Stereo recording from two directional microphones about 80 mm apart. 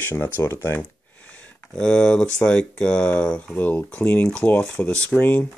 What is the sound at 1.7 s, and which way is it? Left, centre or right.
Speech, centre.